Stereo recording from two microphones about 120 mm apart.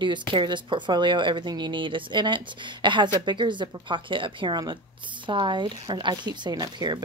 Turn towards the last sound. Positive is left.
turn(degrees=-35)  # may be behind; listen again after turning